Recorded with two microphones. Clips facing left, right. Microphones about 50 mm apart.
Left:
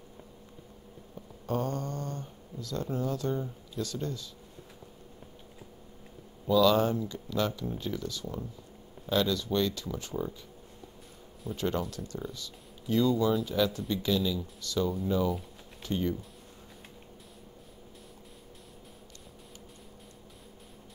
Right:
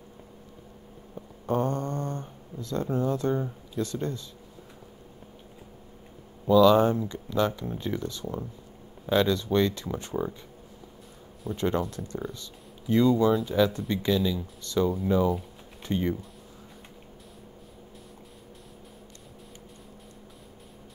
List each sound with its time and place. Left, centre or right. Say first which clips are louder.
1.1 s a sound: right 5 dB; right
3.3 s speech: right 5 dB; right
3.8 s speech: right 4 dB; right
6.4 s speech: right 5 dB; right
11.4 s speech: right 4 dB; centre
11.9 s speech: right 4 dB; right